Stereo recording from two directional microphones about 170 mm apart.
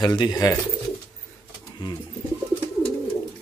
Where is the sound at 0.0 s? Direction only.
25° left (ahead or behind).